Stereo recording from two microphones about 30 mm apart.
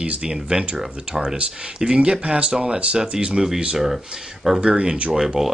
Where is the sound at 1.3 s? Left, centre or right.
Right.